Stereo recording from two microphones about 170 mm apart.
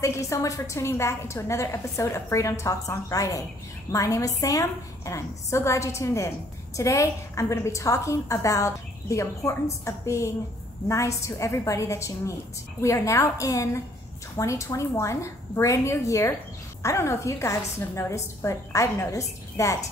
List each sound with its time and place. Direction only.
0.0 s a woman's voice: 20° left (ahead or behind)